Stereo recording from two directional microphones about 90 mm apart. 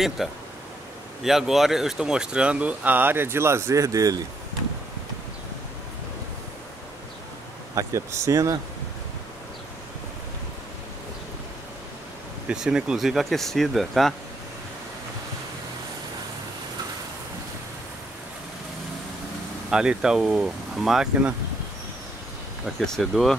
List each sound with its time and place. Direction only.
0.2 s speech: centre (ahead or behind); by 4.2 s 40° right (ahead or behind)
7.7 s speech: 35° right (ahead or behind)
12.4 s speech: 10° right (ahead or behind)
19.7 s speech: 10° right (ahead or behind)
22.8 s speech: 5° left (ahead or behind)